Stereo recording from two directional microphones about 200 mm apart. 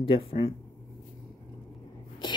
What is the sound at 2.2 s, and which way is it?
Writing, 20° left (ahead or behind).